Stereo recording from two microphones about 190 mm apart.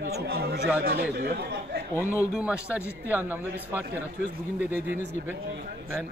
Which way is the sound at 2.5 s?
15° left (ahead or behind).